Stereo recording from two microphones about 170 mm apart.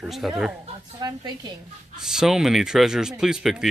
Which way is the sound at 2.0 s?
5° right (ahead or behind).